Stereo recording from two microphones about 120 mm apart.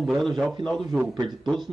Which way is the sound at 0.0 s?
Centre (ahead or behind).